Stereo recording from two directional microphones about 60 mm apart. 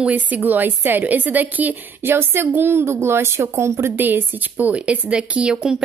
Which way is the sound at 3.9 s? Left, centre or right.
Right.